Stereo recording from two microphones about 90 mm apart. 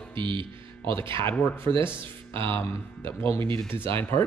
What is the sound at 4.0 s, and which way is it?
Speech, 25° left (ahead or behind).